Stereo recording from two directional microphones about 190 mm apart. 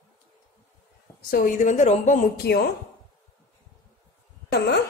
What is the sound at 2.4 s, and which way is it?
Speech, 55° left (ahead or behind).